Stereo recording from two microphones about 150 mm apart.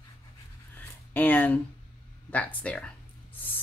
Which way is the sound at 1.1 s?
10° left (ahead or behind).